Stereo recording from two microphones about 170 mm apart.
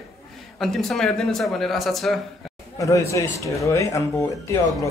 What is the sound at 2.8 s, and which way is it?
Speech, 20° left (ahead or behind).